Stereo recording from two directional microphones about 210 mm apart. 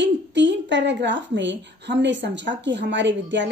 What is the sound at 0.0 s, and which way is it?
A woman's voice, 55° right (ahead or behind).